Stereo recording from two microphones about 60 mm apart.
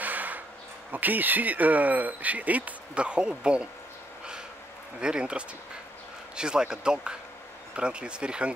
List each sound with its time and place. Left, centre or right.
0.0 s a sound: right
0.9 s speech: right
5.0 s speech: centre